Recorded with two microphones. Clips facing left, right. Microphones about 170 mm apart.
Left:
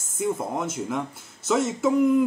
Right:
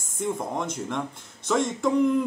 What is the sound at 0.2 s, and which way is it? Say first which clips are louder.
Speech: left 2 dB; 5° left (ahead or behind).